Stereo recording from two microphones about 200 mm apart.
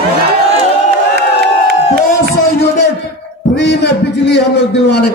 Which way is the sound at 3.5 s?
55° left (ahead or behind).